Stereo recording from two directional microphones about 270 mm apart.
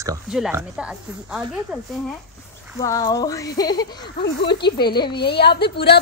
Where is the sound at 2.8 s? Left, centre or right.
Centre.